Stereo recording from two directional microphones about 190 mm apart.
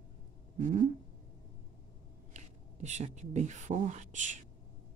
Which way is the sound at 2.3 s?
40° right (ahead or behind).